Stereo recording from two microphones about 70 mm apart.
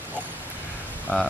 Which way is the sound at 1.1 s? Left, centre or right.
Left.